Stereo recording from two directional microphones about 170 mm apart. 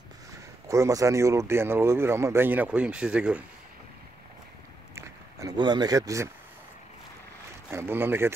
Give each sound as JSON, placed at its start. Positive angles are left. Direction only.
{"t": 0.7, "sound": "speech", "side_deg": -20}
{"t": 4.9, "sound": "speech", "side_deg": -25}
{"t": 7.7, "sound": "speech", "side_deg": -15}